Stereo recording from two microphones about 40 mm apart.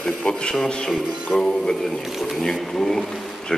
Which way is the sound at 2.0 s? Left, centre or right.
Centre.